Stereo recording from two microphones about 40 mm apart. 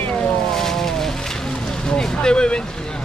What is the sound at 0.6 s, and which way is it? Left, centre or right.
Vehicle, centre.